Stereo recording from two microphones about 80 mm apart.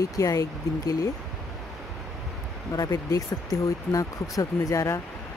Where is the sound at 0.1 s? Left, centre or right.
Left.